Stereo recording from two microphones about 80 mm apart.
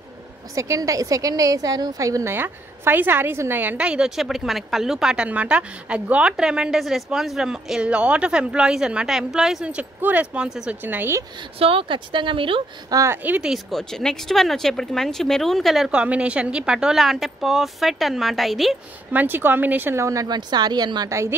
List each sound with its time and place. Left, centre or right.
0.6 s a woman's voice: right
2.3 s a woman's voice: right
3.7 s speech: centre
10.8 s a woman's voice: right
11.9 s a woman's voice: right
13.1 s a woman's voice: right
13.7 s a woman's voice: centre
15.9 s a woman's voice: centre
19.1 s a woman's voice: right
20.0 s a woman's voice: right
20.2 s speech: right
21.1 s a woman's voice: right